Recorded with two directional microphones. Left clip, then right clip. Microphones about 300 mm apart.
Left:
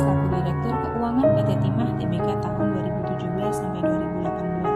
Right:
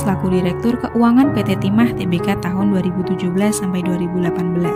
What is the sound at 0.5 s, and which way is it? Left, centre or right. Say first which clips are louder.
Music: right 6 dB; right.